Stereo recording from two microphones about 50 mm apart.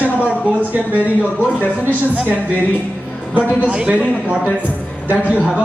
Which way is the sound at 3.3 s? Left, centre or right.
Right.